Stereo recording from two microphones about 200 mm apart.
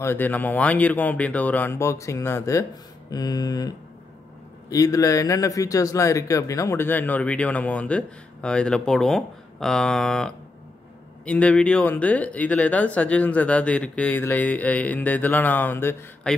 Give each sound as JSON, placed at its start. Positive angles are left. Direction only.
{"t": 0.0, "sound": "speech", "side_deg": 10}